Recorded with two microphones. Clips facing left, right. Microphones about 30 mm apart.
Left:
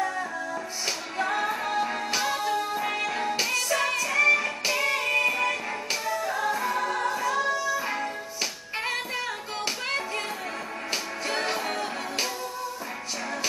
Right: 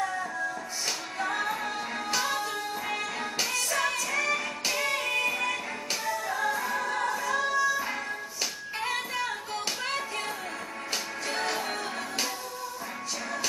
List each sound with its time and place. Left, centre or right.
0.8 s music: centre
8.8 s music: left